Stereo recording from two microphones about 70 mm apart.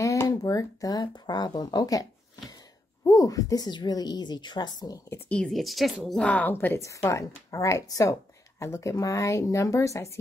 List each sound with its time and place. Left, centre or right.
0.4 s speech: left
5.5 s a woman's voice: centre
6.2 s speech: left
6.5 s a woman's voice: left
6.8 s speech: left